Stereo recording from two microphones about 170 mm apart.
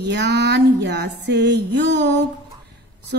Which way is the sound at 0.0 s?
90° right.